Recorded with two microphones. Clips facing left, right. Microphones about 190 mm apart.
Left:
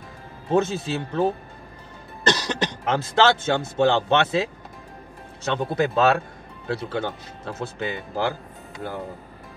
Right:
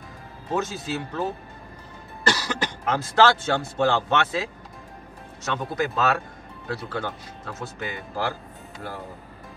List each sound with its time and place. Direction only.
0.5 s speech: 30° left (ahead or behind)
2.2 s speech: 20° left (ahead or behind)